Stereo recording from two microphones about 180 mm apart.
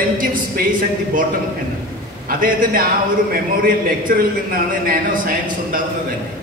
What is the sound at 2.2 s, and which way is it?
A man's voice, 50° right (ahead or behind).